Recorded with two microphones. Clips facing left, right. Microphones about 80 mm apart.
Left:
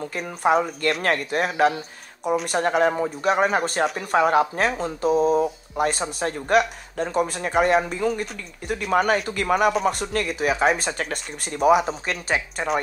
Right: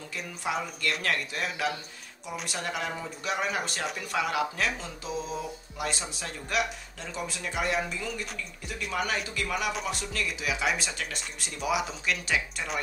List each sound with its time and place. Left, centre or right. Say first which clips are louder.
0.0 s speech: left 11 dB; left